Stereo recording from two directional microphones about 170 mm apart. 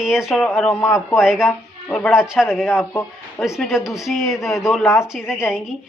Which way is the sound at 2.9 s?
15° left (ahead or behind).